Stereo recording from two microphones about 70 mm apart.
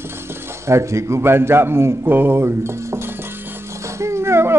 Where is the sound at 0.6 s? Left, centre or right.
Right.